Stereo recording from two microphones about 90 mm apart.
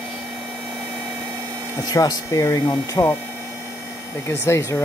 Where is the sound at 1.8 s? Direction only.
40° left (ahead or behind).